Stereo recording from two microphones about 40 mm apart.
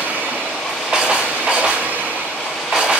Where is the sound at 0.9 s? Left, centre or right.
Centre.